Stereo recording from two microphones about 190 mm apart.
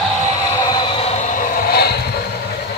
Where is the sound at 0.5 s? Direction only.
20° left (ahead or behind); by 1.9 s 55° left (ahead or behind).